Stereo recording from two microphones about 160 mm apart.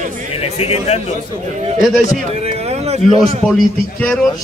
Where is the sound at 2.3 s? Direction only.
40° right (ahead or behind).